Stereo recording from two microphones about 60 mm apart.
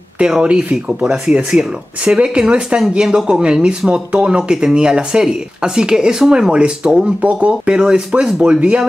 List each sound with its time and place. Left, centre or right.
0.2 s speech: centre